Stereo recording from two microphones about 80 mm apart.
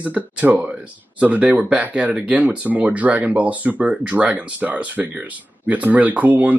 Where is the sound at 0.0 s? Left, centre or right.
Centre.